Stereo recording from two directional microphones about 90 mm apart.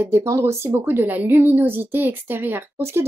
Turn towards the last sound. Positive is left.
turn(degrees=-30)  # may be behind; listen again after turning